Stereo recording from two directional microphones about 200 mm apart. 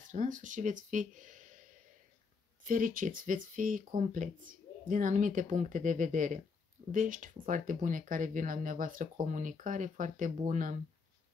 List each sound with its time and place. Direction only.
0.0 s speech: 40° right (ahead or behind)
2.6 s speech: 45° right (ahead or behind)